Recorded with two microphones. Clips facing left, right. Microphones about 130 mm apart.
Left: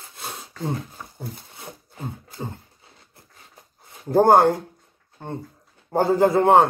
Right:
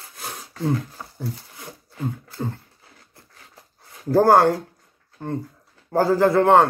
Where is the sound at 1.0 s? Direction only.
20° left (ahead or behind).